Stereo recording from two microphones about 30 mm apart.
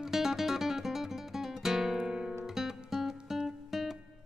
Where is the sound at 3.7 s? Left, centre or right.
Centre.